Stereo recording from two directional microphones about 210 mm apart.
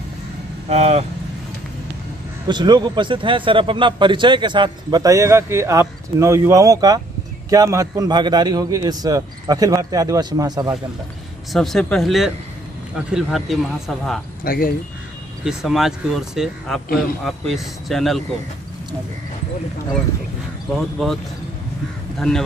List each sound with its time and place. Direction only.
0.7 s speech: 30° right (ahead or behind)
2.4 s a man's voice: 20° right (ahead or behind)
11.5 s speech: centre (ahead or behind)
14.4 s speech: 45° left (ahead or behind)
15.4 s speech: centre (ahead or behind)
21.0 s speech: centre (ahead or behind)